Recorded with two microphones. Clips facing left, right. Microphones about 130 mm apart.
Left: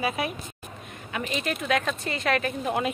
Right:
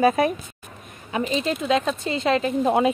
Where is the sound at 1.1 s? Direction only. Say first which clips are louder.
Right 6 dB; 25° right (ahead or behind).